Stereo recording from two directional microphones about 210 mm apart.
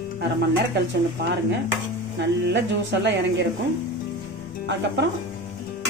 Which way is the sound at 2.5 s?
55° right (ahead or behind).